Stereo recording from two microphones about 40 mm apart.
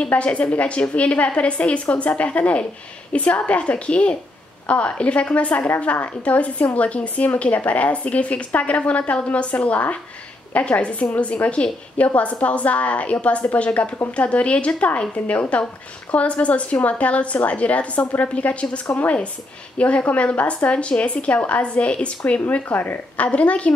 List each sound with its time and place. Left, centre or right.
0.1 s a woman's voice: left
22.5 s speech: left
23.2 s a woman's voice: left